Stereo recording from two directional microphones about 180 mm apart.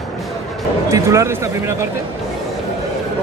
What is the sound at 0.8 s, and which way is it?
Speech, 15° right (ahead or behind).